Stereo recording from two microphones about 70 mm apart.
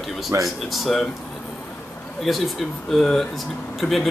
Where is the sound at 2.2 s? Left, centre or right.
Centre.